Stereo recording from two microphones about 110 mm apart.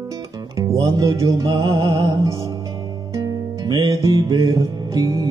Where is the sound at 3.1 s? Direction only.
35° right (ahead or behind).